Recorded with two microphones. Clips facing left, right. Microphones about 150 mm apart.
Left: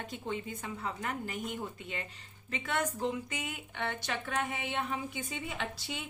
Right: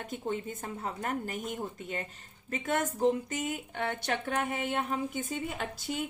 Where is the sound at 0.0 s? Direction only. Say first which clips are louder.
Right 3 dB; 50° right (ahead or behind).